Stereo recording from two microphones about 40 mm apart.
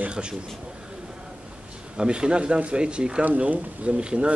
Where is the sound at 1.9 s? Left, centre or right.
Right.